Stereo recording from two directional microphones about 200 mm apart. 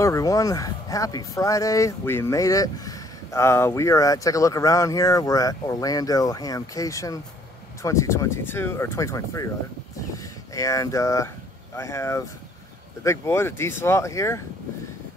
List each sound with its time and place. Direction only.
0.0 s speech: 15° left (ahead or behind)